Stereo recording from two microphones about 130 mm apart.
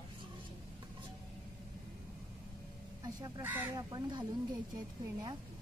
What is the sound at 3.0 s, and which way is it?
Speech, 25° right (ahead or behind).